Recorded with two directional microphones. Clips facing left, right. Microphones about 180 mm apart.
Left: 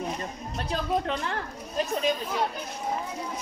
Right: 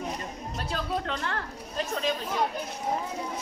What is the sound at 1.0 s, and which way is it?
Speech, 20° left (ahead or behind).